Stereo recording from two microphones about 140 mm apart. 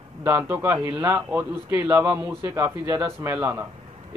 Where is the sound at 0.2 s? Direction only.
15° right (ahead or behind).